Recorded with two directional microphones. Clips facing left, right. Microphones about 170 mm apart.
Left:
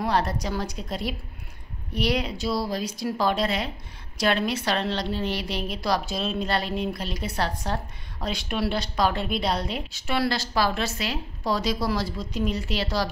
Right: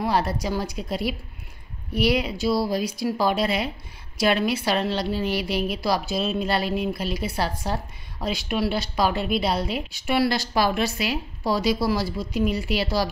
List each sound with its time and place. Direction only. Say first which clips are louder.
0.0 s a woman's voice: right 1 dB; 5° right (ahead or behind)